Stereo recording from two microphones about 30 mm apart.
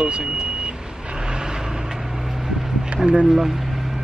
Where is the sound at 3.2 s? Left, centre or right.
Centre.